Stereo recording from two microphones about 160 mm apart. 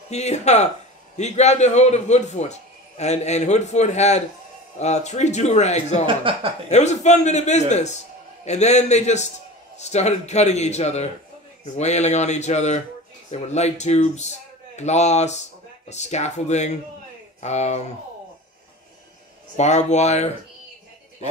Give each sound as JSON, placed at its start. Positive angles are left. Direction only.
{"t": 0.1, "sound": "a man's voice", "side_deg": 45}
{"t": 6.0, "sound": "speech", "side_deg": -35}
{"t": 6.7, "sound": "a man's voice", "side_deg": 45}
{"t": 19.5, "sound": "a man's voice", "side_deg": 45}